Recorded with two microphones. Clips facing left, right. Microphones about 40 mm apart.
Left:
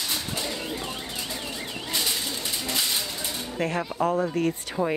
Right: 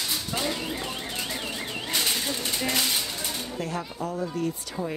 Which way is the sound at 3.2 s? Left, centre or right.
Left.